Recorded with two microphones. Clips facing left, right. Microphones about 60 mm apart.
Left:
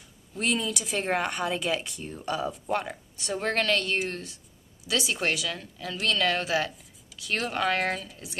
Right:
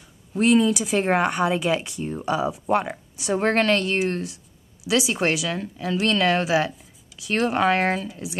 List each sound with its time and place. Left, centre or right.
0.4 s speech: centre
1.0 s speech: right
1.3 s speech: centre
3.3 s speech: right
4.8 s speech: centre
8.1 s speech: centre